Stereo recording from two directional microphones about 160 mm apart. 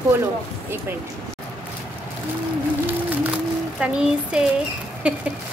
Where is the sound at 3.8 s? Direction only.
5° right (ahead or behind).